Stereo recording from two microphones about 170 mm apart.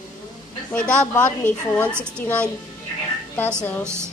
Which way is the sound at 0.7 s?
5° left (ahead or behind).